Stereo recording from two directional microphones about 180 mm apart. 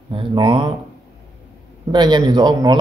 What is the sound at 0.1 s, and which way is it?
Speech, 25° right (ahead or behind).